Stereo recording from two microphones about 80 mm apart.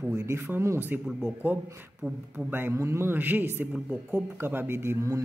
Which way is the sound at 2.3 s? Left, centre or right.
Right.